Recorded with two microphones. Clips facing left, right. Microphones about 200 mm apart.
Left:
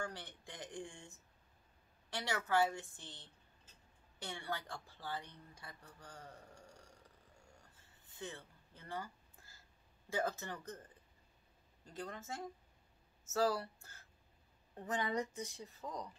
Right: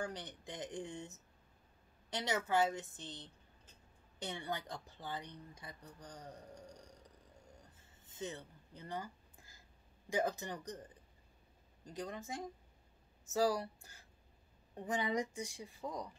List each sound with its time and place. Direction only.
0.0 s speech: 20° right (ahead or behind)
8.1 s a sound: 20° right (ahead or behind)
10.0 s a woman's voice: 15° right (ahead or behind)
11.8 s a woman's voice: 15° right (ahead or behind)